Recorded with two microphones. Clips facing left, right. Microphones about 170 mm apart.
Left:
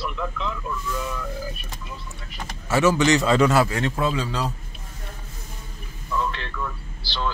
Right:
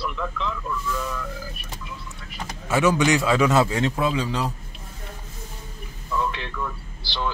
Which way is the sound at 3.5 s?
20° right (ahead or behind).